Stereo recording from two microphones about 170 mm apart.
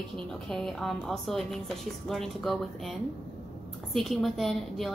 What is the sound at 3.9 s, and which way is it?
Speech, centre (ahead or behind).